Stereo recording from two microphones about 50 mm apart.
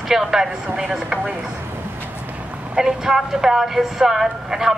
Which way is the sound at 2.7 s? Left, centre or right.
Centre.